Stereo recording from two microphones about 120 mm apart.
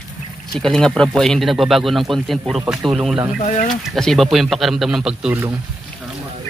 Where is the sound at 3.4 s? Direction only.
90° left.